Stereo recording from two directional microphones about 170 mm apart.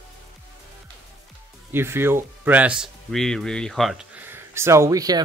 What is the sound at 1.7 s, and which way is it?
Speech, 15° right (ahead or behind).